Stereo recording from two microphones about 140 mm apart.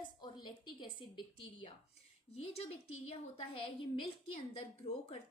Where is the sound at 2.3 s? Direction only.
45° left (ahead or behind).